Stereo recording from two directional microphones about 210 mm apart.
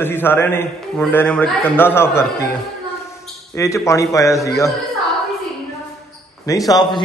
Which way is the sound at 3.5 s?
15° left (ahead or behind).